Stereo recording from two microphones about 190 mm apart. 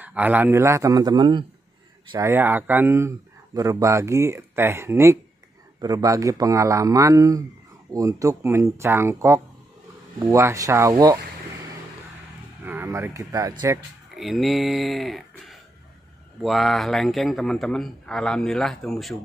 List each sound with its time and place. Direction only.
0.0 s speech: 10° right (ahead or behind)
12.6 s speech: 10° right (ahead or behind)
14.1 s a man's voice: centre (ahead or behind)